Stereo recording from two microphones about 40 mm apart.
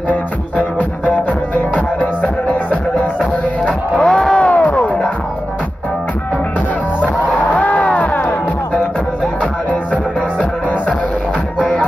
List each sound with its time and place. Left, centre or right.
0.1 s music: left
4.0 s crowd: centre
4.4 s music: left
7.5 s music: left